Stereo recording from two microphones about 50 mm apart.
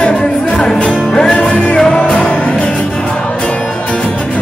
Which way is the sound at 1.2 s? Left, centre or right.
Left.